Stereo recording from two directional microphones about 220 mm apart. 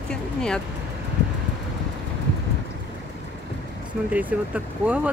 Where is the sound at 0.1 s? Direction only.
5° left (ahead or behind).